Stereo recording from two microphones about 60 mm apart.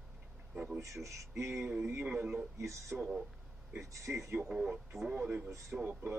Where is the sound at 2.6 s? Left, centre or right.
Right.